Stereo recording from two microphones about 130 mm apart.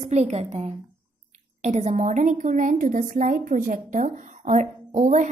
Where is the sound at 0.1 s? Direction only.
60° right (ahead or behind).